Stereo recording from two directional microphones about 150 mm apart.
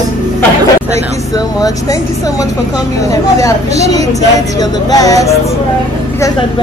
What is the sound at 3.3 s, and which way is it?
Speech, 20° left (ahead or behind).